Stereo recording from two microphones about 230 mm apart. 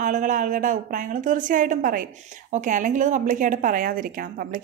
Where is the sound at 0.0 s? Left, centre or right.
Right.